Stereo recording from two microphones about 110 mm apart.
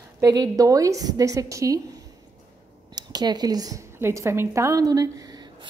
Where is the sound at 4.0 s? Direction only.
25° right (ahead or behind).